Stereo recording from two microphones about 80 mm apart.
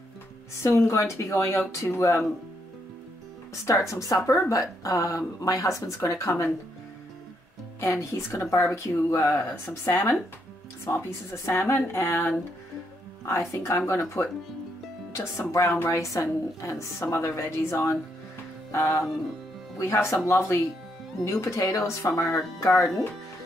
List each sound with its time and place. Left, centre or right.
0.6 s speech: left
3.7 s speech: left
7.8 s speech: left
13.5 s speech: left